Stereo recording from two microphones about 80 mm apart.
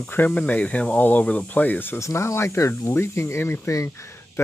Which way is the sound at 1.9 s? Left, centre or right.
Left.